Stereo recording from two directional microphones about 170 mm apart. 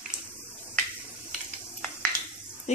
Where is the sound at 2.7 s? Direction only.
40° left (ahead or behind).